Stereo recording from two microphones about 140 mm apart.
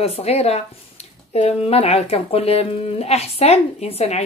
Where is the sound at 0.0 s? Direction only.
45° left (ahead or behind).